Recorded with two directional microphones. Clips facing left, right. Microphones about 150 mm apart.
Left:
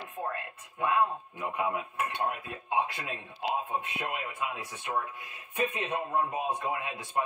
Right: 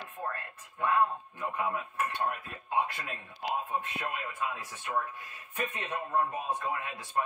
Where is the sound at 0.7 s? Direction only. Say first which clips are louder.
Even; 15° left (ahead or behind).